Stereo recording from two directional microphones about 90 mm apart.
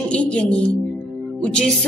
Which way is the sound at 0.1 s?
15° left (ahead or behind).